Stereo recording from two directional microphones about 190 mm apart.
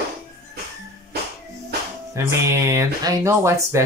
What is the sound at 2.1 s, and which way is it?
Speech, 15° right (ahead or behind).